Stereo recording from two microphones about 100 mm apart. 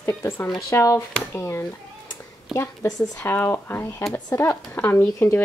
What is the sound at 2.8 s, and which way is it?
Speech, 40° left (ahead or behind).